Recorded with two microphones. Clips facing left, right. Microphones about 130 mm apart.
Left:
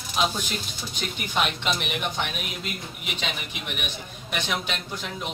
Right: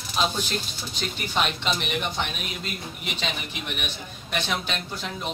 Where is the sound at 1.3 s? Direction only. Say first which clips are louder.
Even; 10° left (ahead or behind).